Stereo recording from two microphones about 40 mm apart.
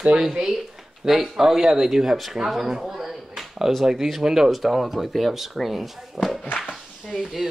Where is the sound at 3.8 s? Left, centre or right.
Centre.